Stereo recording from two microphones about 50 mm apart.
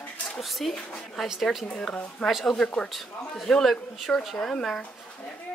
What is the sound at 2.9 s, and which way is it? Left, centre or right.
Speech, centre.